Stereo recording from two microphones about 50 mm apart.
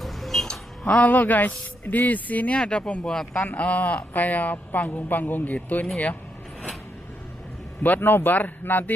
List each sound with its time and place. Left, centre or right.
0.0 s music: centre
0.5 s speech: left
2.6 s speech: left
7.8 s speech: left